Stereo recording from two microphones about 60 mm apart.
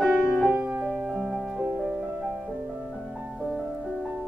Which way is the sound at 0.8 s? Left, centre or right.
Centre.